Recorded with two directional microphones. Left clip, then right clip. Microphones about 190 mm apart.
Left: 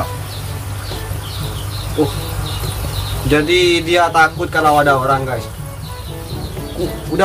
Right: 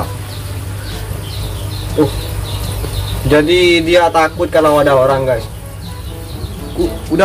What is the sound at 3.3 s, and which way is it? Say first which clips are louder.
A man's voice: right 3 dB; 10° left (ahead or behind).